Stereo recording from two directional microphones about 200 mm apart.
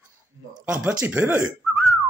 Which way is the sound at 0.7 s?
5° right (ahead or behind).